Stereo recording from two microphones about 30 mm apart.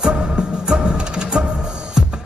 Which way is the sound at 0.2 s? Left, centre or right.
Right.